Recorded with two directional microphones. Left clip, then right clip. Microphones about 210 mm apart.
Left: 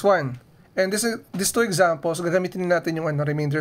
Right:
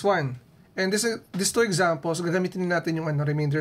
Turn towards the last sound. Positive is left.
turn(degrees=25)  # may be behind; listen again after turning